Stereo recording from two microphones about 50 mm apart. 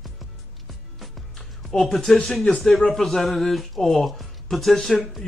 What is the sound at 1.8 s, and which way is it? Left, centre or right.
Speech, centre.